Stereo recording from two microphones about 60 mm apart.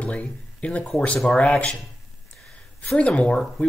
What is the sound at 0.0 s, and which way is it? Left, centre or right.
Speech, left.